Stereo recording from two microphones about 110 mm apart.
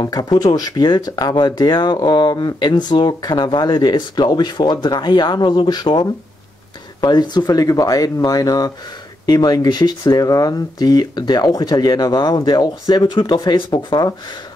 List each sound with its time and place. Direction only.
0.0 s speech: 40° left (ahead or behind)